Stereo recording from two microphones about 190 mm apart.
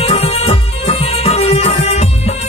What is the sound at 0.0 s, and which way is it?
Music, 30° left (ahead or behind).